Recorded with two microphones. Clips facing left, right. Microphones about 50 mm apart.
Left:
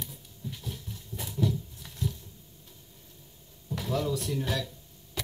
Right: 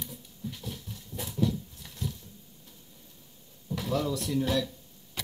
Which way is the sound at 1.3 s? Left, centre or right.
Centre.